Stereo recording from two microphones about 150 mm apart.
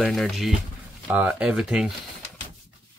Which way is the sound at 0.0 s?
Centre (ahead or behind).